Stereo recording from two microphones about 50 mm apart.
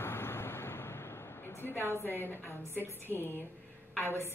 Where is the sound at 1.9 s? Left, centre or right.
Left.